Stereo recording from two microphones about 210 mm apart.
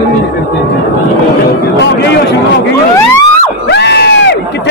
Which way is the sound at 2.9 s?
15° left (ahead or behind).